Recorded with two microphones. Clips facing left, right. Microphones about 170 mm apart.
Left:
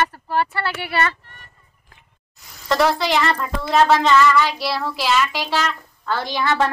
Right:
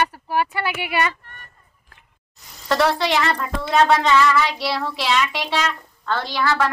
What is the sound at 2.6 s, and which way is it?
A woman's voice, centre (ahead or behind).